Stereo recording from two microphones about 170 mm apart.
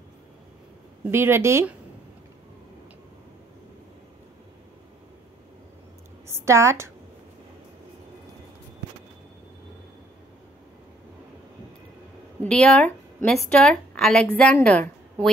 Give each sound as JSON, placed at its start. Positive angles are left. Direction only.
{"t": 1.1, "sound": "a woman's voice", "side_deg": -15}
{"t": 6.2, "sound": "a woman's voice", "side_deg": -15}
{"t": 12.4, "sound": "speech", "side_deg": 5}